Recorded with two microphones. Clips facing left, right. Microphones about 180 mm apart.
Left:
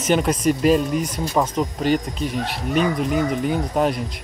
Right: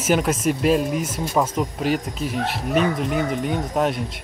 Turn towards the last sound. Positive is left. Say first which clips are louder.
# left 1 dB
turn(degrees=0)  # may be behind; listen again after turning